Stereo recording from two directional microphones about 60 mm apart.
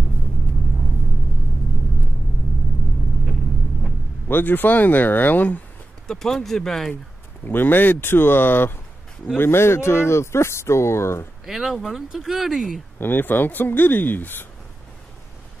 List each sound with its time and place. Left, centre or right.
4.3 s speech: left
6.0 s speech: centre
7.4 s speech: left
11.4 s speech: centre
13.0 s speech: left